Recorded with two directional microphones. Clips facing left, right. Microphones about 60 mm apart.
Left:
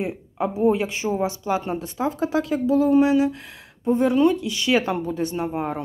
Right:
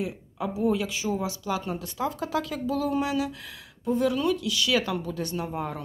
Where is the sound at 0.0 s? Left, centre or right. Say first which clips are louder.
Left 5 dB; left.